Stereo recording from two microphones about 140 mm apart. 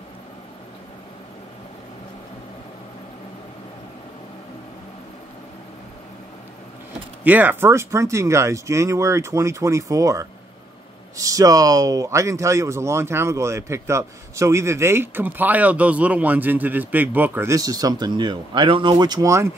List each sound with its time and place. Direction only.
7.2 s speech: 10° right (ahead or behind)